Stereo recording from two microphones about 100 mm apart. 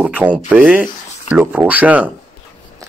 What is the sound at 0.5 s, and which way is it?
Speech, 15° right (ahead or behind).